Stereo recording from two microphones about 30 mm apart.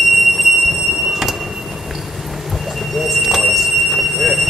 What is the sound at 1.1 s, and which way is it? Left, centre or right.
Train, centre.